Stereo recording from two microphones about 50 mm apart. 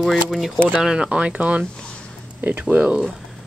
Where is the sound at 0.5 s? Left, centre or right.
Right.